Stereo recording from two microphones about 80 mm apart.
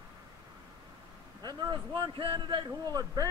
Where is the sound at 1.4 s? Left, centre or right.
Right.